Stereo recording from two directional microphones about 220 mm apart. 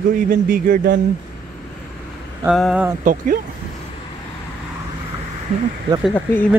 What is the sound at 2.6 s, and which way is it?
Speech, centre (ahead or behind).